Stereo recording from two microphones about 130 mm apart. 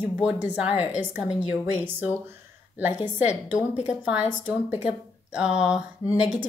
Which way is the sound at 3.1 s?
15° right (ahead or behind).